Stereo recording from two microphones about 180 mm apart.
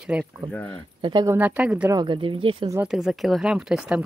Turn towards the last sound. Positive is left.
turn(degrees=-5)  # may be behind; listen again after turning